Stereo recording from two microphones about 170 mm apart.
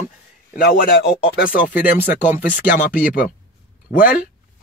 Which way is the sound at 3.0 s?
55° left (ahead or behind).